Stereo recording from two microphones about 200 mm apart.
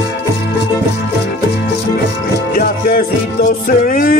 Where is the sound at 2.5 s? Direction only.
50° left (ahead or behind).